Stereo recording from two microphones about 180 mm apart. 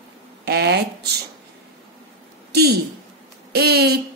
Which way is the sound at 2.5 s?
65° right (ahead or behind).